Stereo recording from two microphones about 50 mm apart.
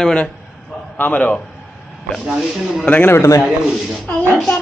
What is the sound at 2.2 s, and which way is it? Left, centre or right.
Speech, centre.